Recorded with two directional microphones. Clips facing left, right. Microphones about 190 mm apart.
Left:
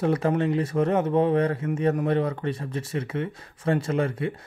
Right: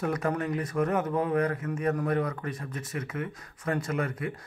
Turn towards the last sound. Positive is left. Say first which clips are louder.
# left 5 dB
turn(degrees=25)  # may be behind; listen again after turning